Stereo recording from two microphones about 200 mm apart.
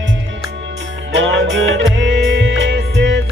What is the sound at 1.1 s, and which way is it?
Music, 70° right (ahead or behind).